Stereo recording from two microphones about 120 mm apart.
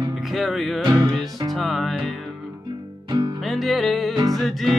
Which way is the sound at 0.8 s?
35° right (ahead or behind).